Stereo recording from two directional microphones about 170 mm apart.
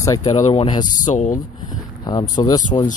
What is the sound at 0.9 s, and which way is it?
Speech, 45° left (ahead or behind).